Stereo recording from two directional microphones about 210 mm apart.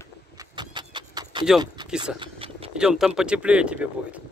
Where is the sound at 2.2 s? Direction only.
25° right (ahead or behind).